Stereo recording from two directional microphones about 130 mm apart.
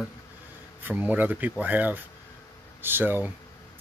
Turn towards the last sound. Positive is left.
turn(degrees=-15)  # may be behind; listen again after turning